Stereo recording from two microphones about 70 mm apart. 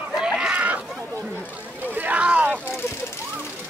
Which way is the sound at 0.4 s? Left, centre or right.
Centre.